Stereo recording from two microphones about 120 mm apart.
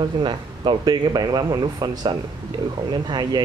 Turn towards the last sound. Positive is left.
turn(degrees=-35)  # may be behind; listen again after turning